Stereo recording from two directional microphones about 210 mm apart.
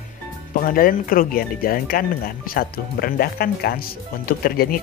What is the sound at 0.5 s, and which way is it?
Speech, 40° left (ahead or behind).